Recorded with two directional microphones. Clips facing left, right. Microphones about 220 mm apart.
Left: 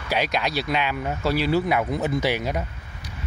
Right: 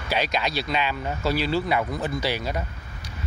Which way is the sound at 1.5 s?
15° left (ahead or behind).